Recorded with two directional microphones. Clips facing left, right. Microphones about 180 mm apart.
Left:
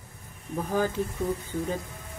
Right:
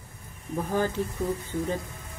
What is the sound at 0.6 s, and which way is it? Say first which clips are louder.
Speech: even; 10° left (ahead or behind).